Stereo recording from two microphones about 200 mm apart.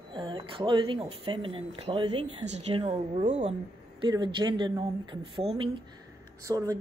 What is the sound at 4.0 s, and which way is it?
Speech, 25° right (ahead or behind).